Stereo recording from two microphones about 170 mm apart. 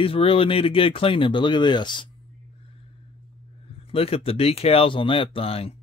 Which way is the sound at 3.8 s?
35° left (ahead or behind).